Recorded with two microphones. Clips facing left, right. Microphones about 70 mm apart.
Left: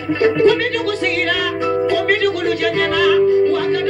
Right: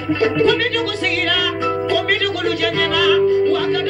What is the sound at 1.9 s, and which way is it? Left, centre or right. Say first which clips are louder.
Music: left 2 dB; left.